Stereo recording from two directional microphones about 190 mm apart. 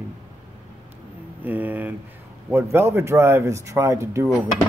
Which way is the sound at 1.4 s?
10° right (ahead or behind).